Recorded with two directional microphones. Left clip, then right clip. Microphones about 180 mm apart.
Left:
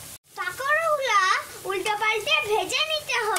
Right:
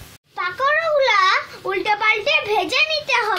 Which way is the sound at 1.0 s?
30° right (ahead or behind).